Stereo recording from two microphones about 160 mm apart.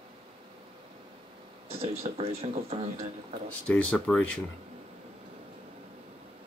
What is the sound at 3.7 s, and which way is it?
Speech, 5° left (ahead or behind).